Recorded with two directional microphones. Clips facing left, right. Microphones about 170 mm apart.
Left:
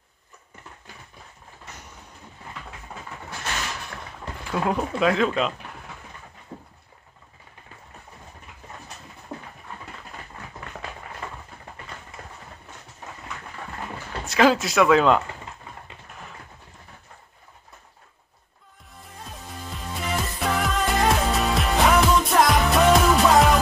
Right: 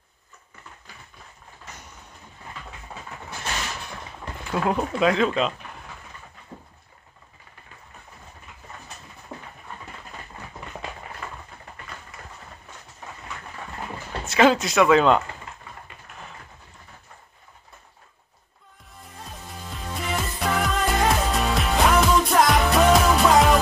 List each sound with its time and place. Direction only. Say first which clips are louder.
4.5 s speech: right 1 dB; centre (ahead or behind)
11.2 s a sound: left 1 dB; 30° left (ahead or behind)
14.2 s speech: right 1 dB; centre (ahead or behind)
18.9 s music: even; centre (ahead or behind)